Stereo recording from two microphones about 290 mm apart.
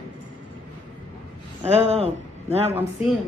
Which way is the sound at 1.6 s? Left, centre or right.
Right.